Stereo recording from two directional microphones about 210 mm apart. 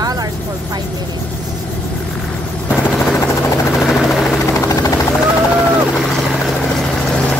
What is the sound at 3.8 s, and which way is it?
Helicopter, centre (ahead or behind).